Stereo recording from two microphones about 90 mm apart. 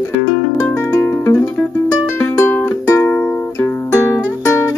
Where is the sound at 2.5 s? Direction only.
25° left (ahead or behind).